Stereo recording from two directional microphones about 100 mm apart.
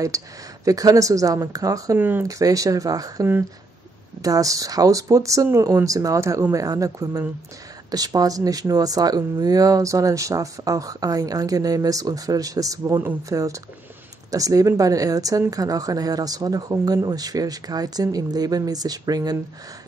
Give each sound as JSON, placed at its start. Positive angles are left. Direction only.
{"t": 0.1, "sound": "speech", "side_deg": -35}
{"t": 2.0, "sound": "speech", "side_deg": -20}
{"t": 2.2, "sound": "speech", "side_deg": -35}